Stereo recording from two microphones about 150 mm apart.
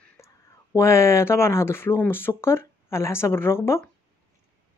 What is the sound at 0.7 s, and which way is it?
Speech, 20° left (ahead or behind).